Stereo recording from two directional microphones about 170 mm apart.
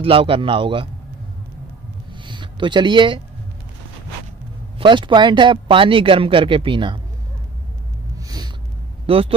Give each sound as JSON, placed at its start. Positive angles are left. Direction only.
{"t": 0.0, "sound": "speech", "side_deg": -35}
{"t": 2.2, "sound": "a sound", "side_deg": -25}
{"t": 4.7, "sound": "speech", "side_deg": -30}
{"t": 8.2, "sound": "snort", "side_deg": -20}
{"t": 9.0, "sound": "speech", "side_deg": -35}